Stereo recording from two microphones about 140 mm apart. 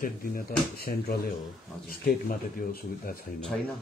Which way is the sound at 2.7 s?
90° left.